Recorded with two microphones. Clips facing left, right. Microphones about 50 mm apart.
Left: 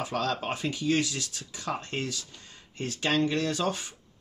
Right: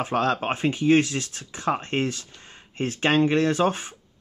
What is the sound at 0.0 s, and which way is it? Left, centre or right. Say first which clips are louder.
Speech: right 6 dB; right.